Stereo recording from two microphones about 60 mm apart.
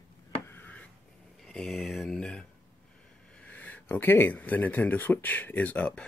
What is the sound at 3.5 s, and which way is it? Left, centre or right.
Speech, left.